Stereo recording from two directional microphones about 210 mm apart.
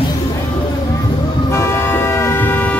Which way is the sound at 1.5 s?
10° left (ahead or behind).